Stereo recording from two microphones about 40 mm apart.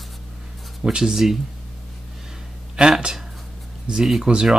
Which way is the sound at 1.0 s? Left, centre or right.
Centre.